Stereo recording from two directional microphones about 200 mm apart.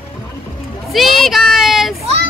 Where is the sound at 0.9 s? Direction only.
Centre (ahead or behind).